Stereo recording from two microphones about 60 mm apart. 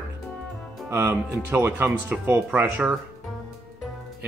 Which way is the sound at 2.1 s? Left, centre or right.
Right.